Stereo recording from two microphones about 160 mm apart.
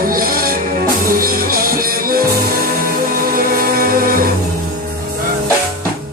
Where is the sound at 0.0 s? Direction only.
65° right (ahead or behind).